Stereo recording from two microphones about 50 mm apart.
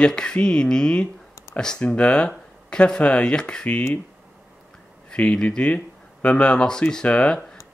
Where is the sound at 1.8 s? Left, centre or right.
Left.